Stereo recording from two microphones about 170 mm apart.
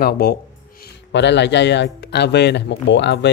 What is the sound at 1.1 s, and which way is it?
Speech, 90° left.